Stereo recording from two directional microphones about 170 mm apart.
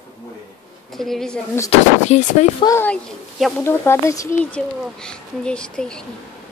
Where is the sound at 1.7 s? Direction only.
40° left (ahead or behind).